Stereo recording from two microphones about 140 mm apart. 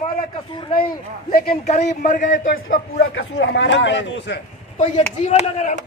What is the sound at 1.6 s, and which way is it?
A man's voice, 55° left (ahead or behind).